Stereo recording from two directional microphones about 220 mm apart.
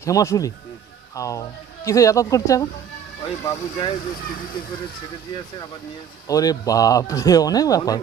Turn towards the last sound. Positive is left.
turn(degrees=15)  # may be behind; listen again after turning